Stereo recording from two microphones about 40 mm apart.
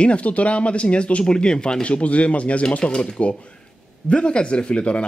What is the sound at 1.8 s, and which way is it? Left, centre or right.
Speech, left.